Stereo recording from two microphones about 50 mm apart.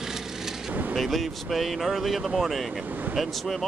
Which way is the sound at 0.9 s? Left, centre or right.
Centre.